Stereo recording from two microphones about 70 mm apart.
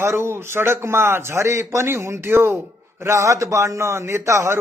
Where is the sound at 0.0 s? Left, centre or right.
Right.